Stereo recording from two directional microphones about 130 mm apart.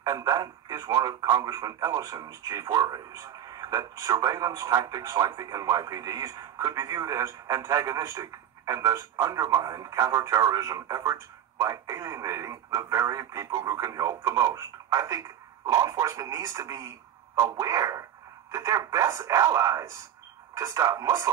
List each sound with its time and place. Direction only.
0.0 s speech: 30° right (ahead or behind)